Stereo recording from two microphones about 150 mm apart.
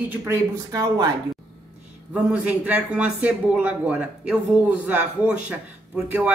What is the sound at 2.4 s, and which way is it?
Speech, 10° right (ahead or behind).